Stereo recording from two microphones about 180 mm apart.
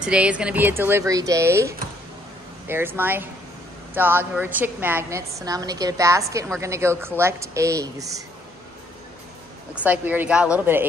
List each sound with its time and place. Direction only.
0.0 s a woman's voice: 5° right (ahead or behind)
9.8 s a woman's voice: 10° right (ahead or behind)